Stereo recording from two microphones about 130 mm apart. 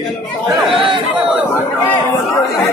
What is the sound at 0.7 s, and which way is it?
Speech, 40° right (ahead or behind).